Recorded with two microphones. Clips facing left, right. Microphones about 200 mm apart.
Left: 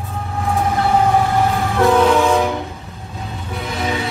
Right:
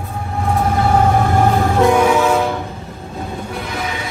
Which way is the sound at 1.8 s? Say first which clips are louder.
Left 1 dB; 10° right (ahead or behind).